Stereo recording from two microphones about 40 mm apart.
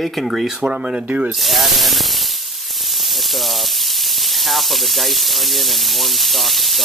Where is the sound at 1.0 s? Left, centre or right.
Right.